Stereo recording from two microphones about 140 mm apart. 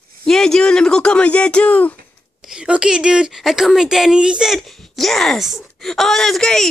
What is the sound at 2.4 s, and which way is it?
Speech, 5° right (ahead or behind).